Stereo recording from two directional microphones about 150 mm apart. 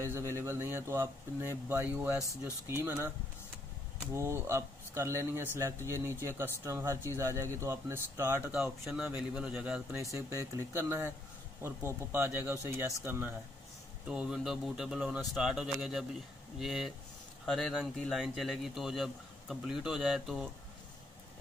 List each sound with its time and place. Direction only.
0.0 s speech: 15° right (ahead or behind)
4.1 s a man's voice: 20° right (ahead or behind)